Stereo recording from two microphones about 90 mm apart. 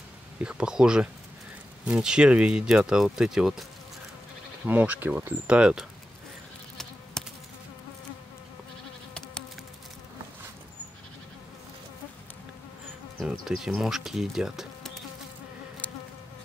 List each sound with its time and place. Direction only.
0.4 s speech: 10° right (ahead or behind)
4.6 s speech: 15° right (ahead or behind)
7.2 s insect: 5° left (ahead or behind)
13.2 s insect: 5° right (ahead or behind)